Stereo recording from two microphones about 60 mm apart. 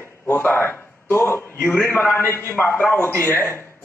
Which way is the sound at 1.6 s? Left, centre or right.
Left.